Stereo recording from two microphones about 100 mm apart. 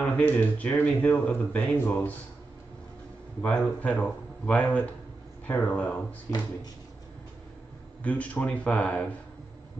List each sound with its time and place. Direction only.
0.0 s speech: 20° left (ahead or behind)
3.4 s speech: 10° left (ahead or behind)
8.0 s speech: 15° left (ahead or behind)